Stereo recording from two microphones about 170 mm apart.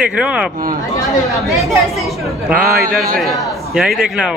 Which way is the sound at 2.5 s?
55° right (ahead or behind).